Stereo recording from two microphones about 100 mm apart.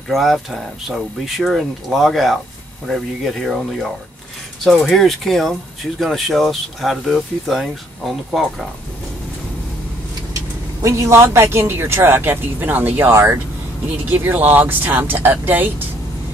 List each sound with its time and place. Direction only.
0.1 s speech: centre (ahead or behind)
4.6 s speech: centre (ahead or behind)
10.8 s speech: 30° right (ahead or behind)